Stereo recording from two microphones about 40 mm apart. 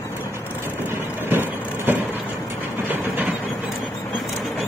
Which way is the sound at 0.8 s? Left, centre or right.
Right.